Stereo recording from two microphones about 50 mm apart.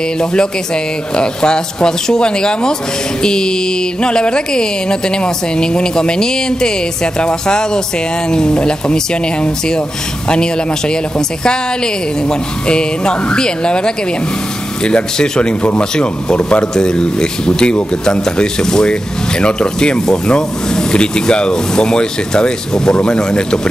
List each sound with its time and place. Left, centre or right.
0.2 s speech: centre